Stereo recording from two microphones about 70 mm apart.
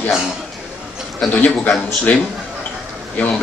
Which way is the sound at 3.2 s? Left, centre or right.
Left.